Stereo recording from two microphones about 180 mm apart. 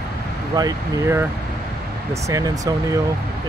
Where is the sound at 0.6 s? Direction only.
15° right (ahead or behind).